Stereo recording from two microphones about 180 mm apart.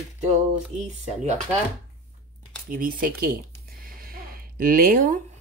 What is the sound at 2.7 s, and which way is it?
Speech, 55° right (ahead or behind).